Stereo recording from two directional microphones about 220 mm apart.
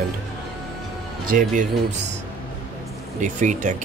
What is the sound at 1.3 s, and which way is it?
Speech, 35° right (ahead or behind).